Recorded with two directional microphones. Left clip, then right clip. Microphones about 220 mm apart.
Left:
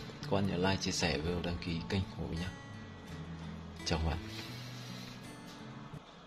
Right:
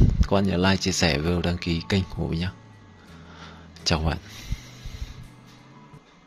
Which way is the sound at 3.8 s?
40° right (ahead or behind).